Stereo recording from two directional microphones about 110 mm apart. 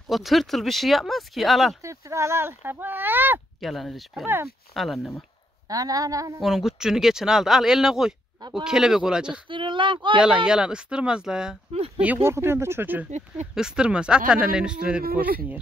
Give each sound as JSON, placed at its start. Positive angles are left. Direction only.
{"t": 0.1, "sound": "speech", "side_deg": 0}
{"t": 1.8, "sound": "speech", "side_deg": -25}
{"t": 3.6, "sound": "speech", "side_deg": 0}
{"t": 5.7, "sound": "a woman's voice", "side_deg": -35}
{"t": 6.4, "sound": "speech", "side_deg": -5}
{"t": 8.4, "sound": "speech", "side_deg": -40}
{"t": 8.6, "sound": "speech", "side_deg": -5}
{"t": 9.5, "sound": "speech", "side_deg": -50}
{"t": 10.1, "sound": "speech", "side_deg": -10}
{"t": 12.0, "sound": "speech", "side_deg": -20}
{"t": 13.6, "sound": "speech", "side_deg": -5}